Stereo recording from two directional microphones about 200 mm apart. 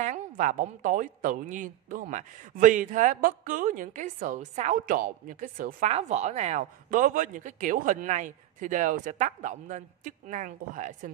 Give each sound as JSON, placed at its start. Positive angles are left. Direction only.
{"t": 0.0, "sound": "a woman's voice", "side_deg": -35}